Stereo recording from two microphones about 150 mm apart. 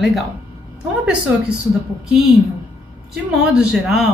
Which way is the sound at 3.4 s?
5° right (ahead or behind).